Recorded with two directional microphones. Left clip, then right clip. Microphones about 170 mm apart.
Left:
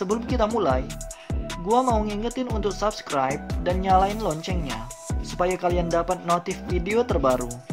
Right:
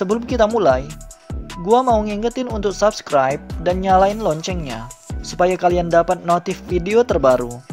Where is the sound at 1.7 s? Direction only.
40° right (ahead or behind).